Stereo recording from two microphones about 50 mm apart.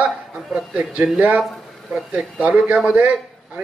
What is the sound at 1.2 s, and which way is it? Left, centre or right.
A man's voice, right.